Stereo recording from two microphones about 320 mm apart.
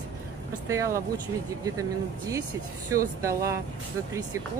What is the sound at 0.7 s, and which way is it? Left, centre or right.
Speech, centre.